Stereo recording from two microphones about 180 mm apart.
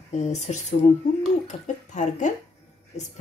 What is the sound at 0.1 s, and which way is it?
Speech, 40° left (ahead or behind).